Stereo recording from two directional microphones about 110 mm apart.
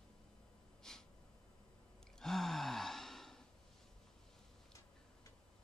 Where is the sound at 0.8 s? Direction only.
5° left (ahead or behind).